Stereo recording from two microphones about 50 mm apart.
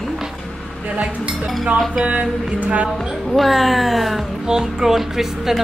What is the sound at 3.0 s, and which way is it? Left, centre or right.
Speech, centre.